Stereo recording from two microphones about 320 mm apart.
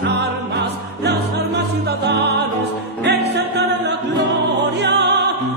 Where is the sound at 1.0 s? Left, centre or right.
Right.